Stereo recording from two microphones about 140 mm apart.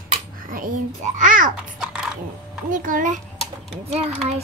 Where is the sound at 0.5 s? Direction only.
75° right (ahead or behind).